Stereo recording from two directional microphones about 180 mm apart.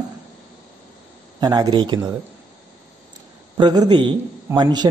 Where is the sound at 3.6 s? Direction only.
25° right (ahead or behind).